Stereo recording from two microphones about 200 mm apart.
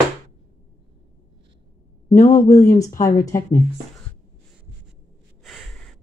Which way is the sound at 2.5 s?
15° left (ahead or behind).